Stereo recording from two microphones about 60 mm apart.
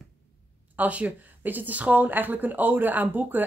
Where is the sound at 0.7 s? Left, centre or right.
Right.